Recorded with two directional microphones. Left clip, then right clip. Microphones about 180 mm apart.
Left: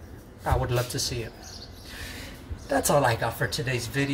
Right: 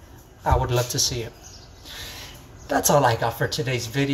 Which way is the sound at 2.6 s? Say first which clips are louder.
Right 4 dB; 15° left (ahead or behind).